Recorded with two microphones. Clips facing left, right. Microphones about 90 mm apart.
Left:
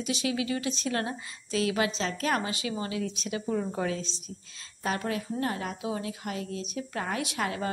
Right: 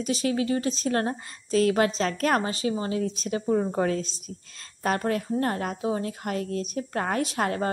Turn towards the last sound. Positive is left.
turn(degrees=-45)  # may be behind; listen again after turning